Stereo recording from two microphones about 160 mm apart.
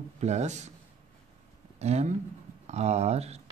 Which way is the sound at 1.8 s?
45° right (ahead or behind).